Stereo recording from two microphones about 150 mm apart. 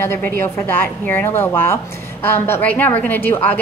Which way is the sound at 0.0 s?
15° left (ahead or behind).